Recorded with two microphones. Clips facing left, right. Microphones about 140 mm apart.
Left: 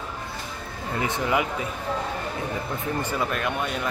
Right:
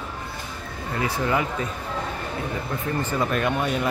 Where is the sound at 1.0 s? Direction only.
20° left (ahead or behind).